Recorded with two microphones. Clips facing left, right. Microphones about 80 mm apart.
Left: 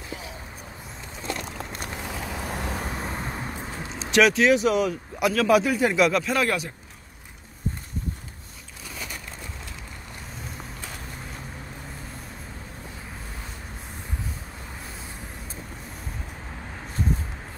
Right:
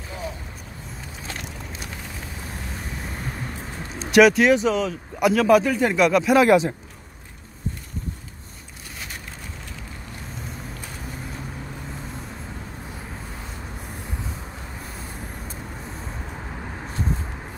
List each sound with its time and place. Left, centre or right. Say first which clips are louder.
2.1 s vehicle: left 4 dB; left
2.9 s vehicle: left 3 dB; left
3.2 s vehicle: even; centre
4.0 s speech: right 4 dB; centre
4.6 s speech: even; centre
5.2 s speech: right 4 dB; centre
5.5 s speech: right 1 dB; centre
6.2 s speech: right 9 dB; centre